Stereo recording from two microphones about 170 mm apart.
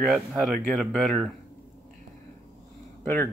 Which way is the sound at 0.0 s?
5° right (ahead or behind).